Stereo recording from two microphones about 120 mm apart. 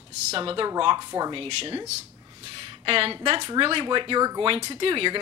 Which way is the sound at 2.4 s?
50° right (ahead or behind).